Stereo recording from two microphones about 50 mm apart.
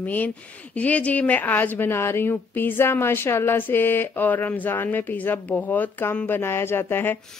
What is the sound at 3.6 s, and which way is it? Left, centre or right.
Speech, left.